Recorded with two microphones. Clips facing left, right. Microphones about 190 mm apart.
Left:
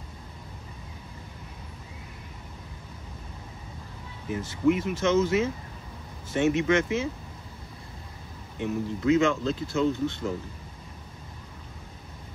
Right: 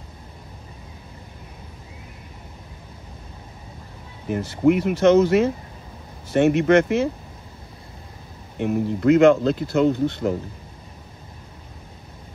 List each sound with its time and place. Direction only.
4.3 s speech: 65° right (ahead or behind)
8.5 s speech: 65° right (ahead or behind)